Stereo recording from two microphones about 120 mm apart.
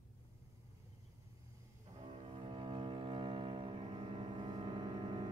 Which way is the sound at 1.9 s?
50° right (ahead or behind).